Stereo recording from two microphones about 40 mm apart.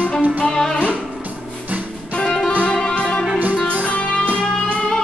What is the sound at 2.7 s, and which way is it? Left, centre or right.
Music, centre.